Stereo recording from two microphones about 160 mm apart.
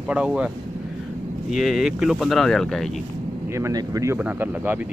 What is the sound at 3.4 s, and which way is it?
Speech, 20° right (ahead or behind).